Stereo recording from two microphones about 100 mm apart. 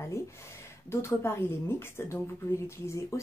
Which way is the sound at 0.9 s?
25° left (ahead or behind).